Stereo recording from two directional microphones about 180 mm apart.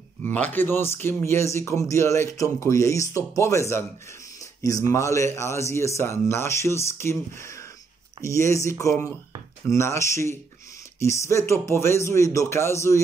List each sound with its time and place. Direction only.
0.2 s speech: 10° left (ahead or behind)